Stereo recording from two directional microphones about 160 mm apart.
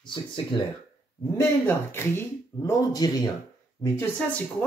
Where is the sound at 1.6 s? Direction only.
15° left (ahead or behind).